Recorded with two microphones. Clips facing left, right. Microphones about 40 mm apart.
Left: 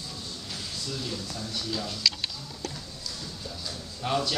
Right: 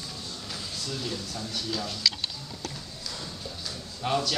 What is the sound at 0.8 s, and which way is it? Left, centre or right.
A man's voice, centre.